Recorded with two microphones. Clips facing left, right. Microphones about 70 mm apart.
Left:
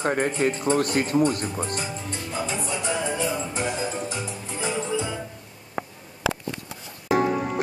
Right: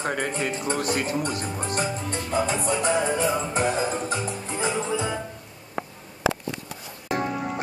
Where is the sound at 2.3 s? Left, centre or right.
Right.